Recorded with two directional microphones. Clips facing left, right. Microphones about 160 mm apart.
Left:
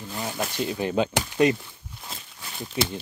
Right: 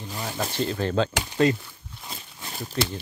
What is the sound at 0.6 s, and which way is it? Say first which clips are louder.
Speech: right 1 dB; 10° left (ahead or behind).